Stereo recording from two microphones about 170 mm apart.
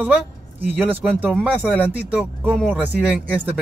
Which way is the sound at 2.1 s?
10° right (ahead or behind).